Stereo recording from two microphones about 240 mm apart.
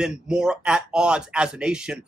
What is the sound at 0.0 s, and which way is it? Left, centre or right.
A man's voice, centre.